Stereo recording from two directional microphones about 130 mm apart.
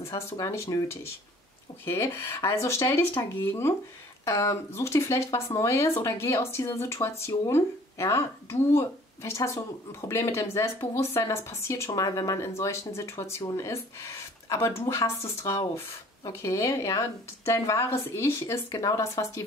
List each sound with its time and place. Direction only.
0.0 s speech: 25° left (ahead or behind)